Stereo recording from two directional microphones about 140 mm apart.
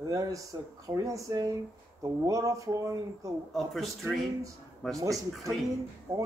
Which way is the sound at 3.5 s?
Centre (ahead or behind).